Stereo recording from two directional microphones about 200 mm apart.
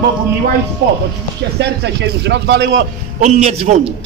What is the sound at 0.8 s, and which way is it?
Speech, 60° right (ahead or behind).